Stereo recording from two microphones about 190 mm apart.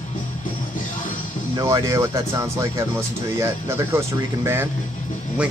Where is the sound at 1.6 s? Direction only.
15° right (ahead or behind).